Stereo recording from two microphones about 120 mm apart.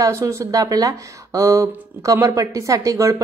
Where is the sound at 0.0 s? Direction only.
25° right (ahead or behind).